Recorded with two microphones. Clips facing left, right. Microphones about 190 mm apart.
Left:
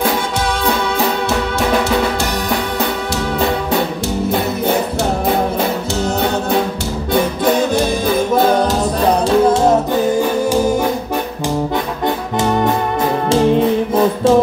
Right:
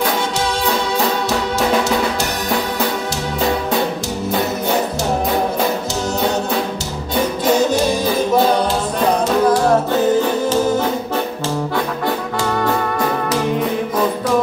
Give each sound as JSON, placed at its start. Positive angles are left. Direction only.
{"t": 12.4, "sound": "music", "side_deg": 20}